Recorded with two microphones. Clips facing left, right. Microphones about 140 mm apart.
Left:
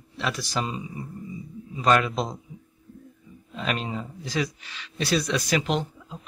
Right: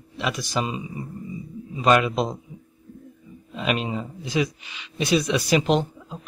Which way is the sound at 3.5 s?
10° right (ahead or behind).